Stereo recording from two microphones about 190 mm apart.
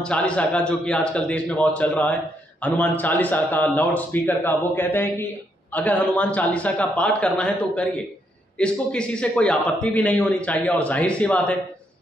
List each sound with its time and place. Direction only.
0.0 s a man's voice: 5° left (ahead or behind)